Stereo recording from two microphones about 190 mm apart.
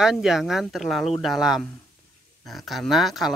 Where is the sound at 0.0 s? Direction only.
Centre (ahead or behind).